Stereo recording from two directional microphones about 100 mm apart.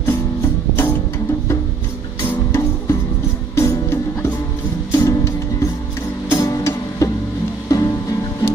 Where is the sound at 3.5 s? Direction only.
30° left (ahead or behind).